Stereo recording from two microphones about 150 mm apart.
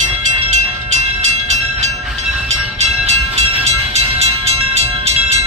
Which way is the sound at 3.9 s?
45° right (ahead or behind).